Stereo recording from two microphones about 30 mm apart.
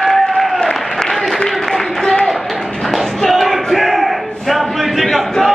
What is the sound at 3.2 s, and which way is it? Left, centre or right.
Music, centre.